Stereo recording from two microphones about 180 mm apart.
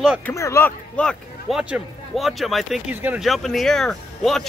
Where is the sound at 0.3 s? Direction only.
15° left (ahead or behind).